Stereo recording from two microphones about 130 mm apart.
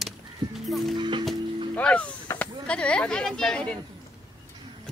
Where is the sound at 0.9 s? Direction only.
35° right (ahead or behind).